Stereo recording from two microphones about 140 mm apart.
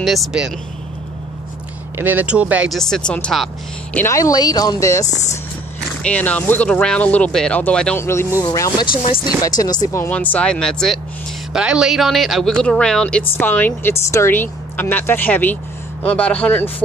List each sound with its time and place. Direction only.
0.0 s a man's voice: centre (ahead or behind)
2.0 s speech: 10° right (ahead or behind)
2.8 s a man's voice: 5° left (ahead or behind)
3.9 s speech: 20° left (ahead or behind)
5.0 s speech: 55° left (ahead or behind)
6.0 s a woman's voice: 10° left (ahead or behind); by 8.8 s 25° left (ahead or behind)
8.9 s speech: 40° left (ahead or behind)
9.4 s speech: 25° left (ahead or behind)
10.0 s a woman's voice: 10° left (ahead or behind)